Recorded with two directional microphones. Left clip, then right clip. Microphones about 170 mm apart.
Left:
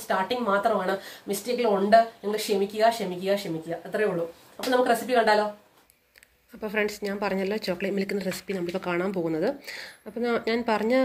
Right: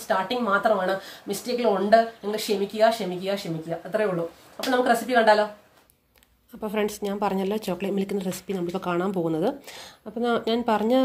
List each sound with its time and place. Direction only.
0.1 s speech: centre (ahead or behind)
6.6 s speech: 45° right (ahead or behind)